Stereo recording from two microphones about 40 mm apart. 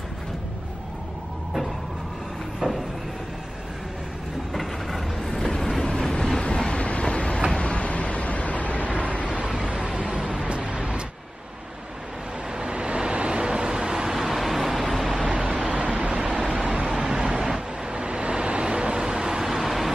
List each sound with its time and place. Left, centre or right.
2.6 s a sound: centre
4.6 s vehicle: centre
6.4 s train: left
7.5 s vehicle: left
9.9 s vehicle: right
12.5 s vehicle: right
14.1 s vehicle: centre
15.2 s vehicle: right
18.0 s vehicle: right; by 19.9 s centre